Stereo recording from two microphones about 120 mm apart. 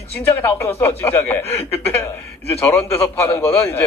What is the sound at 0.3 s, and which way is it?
A man's voice, 20° left (ahead or behind).